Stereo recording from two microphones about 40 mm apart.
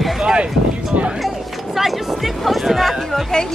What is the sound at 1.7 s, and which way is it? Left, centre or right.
Speech, centre.